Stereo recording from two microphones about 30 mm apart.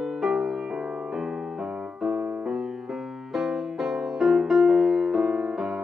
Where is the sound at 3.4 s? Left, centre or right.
Centre.